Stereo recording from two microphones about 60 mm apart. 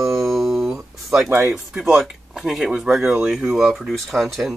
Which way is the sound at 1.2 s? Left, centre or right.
Right.